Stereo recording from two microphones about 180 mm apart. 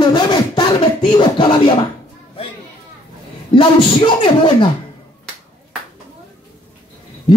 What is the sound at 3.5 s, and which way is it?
Speech, 30° left (ahead or behind).